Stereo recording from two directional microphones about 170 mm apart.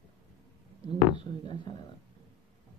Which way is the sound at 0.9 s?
25° left (ahead or behind).